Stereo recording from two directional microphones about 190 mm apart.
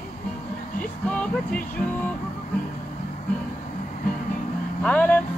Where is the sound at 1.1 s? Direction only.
5° left (ahead or behind).